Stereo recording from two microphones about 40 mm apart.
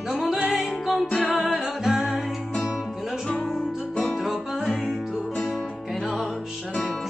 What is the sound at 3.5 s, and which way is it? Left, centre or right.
Music, centre.